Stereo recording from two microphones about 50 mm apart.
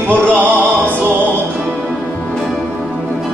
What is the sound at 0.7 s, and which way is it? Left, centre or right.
Opera, right.